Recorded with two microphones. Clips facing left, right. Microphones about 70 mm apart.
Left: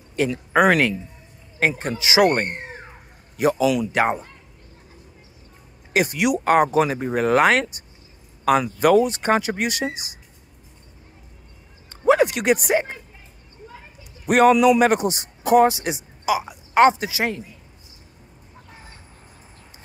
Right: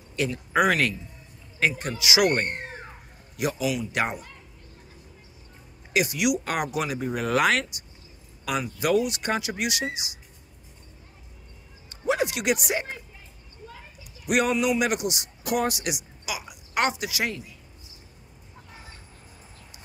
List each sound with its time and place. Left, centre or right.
0.2 s speech: left
1.6 s speech: left
3.9 s speech: left
5.9 s speech: left
12.0 s a sound: left
14.2 s a man's voice: left